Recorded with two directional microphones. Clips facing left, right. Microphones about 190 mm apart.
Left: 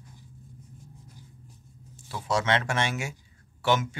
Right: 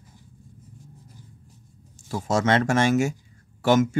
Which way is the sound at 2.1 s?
45° right (ahead or behind).